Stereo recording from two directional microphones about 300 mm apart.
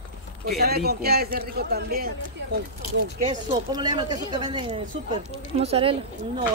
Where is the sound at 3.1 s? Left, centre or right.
Centre.